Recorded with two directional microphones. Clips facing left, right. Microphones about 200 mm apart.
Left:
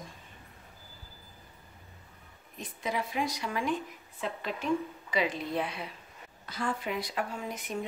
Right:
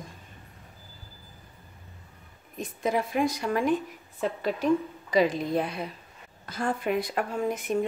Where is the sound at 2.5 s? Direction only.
50° right (ahead or behind).